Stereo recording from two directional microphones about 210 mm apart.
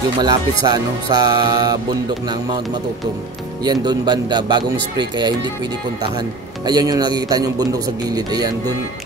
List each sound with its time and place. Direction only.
0.2 s speech: 20° right (ahead or behind)
3.6 s speech: 20° right (ahead or behind)
6.6 s speech: 20° right (ahead or behind)